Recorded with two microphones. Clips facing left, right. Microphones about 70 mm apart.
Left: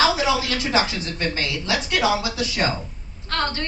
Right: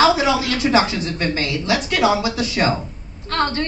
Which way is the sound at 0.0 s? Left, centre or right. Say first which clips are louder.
Right 4 dB; right.